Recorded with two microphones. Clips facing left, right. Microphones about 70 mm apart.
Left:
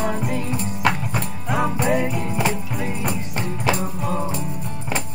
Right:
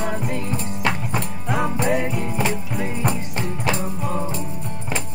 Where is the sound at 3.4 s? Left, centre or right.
Centre.